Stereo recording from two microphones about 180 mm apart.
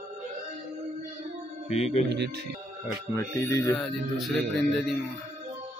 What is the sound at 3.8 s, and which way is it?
A man's voice, centre (ahead or behind).